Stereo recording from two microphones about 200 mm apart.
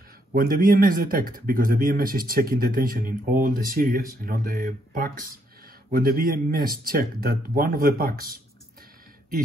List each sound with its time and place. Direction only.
0.3 s speech: 45° right (ahead or behind)